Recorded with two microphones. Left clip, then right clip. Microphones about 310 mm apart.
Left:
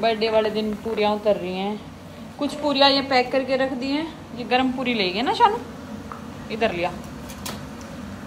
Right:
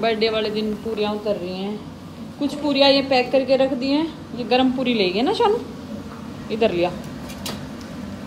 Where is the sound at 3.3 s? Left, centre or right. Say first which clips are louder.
Right 4 dB; centre.